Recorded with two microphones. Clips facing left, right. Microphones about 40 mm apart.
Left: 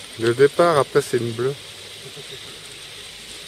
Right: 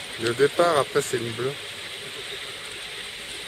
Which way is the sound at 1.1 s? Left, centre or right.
Right.